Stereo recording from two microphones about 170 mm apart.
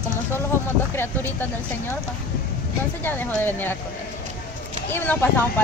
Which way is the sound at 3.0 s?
10° left (ahead or behind).